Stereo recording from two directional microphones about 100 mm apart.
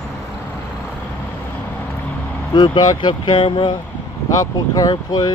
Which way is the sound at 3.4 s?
60° left (ahead or behind).